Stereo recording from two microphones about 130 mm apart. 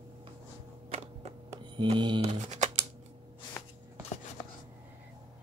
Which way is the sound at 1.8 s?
35° right (ahead or behind).